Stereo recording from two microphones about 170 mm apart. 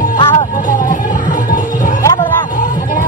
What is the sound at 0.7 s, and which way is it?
Music, 50° left (ahead or behind).